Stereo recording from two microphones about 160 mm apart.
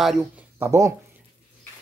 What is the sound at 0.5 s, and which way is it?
Speech, 20° right (ahead or behind).